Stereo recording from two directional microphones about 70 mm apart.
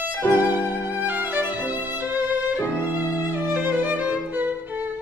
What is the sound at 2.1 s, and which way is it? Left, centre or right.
Violin, right.